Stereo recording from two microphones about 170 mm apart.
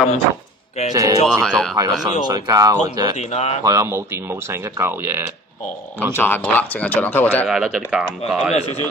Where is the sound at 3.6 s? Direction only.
20° right (ahead or behind).